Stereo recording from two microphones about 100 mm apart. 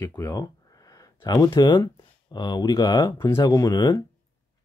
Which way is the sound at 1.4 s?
50° left (ahead or behind).